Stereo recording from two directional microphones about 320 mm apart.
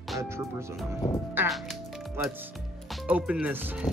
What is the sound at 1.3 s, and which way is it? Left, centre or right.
Speech, centre.